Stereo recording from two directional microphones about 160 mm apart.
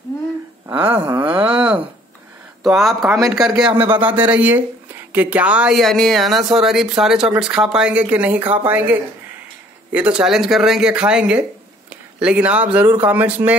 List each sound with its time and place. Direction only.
0.7 s a sound: 10° right (ahead or behind)
2.6 s speech: centre (ahead or behind)
3.7 s speech: 35° right (ahead or behind)
4.3 s speech: 10° right (ahead or behind)
9.9 s speech: 5° right (ahead or behind)